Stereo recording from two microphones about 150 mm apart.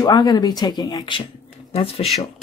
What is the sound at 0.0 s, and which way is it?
Speech, 30° left (ahead or behind).